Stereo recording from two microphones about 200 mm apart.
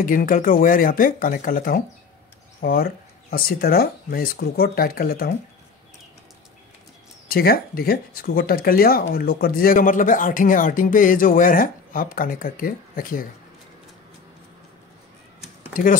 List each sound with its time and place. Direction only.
0.0 s speech: 45° left (ahead or behind)
7.2 s speech: 50° left (ahead or behind)
15.7 s speech: 45° left (ahead or behind)